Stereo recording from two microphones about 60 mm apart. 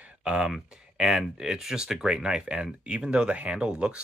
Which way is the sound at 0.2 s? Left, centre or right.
Centre.